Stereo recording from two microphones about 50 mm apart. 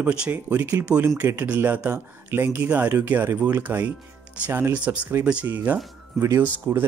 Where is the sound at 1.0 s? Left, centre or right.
Right.